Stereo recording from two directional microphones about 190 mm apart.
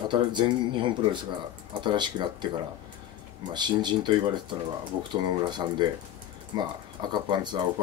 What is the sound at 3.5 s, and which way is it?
Speech, 25° right (ahead or behind).